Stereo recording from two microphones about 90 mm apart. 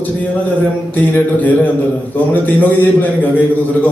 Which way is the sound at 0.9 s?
20° left (ahead or behind).